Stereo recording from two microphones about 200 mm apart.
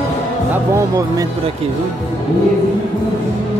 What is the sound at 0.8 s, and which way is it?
Speech, 15° right (ahead or behind).